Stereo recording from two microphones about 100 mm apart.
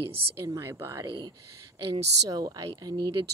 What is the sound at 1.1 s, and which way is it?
A woman's voice, 45° right (ahead or behind).